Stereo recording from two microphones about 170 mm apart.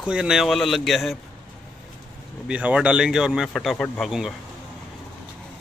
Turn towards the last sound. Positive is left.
turn(degrees=5)  # may be behind; listen again after turning